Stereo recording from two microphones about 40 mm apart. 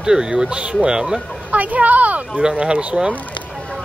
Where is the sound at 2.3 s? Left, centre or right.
Right.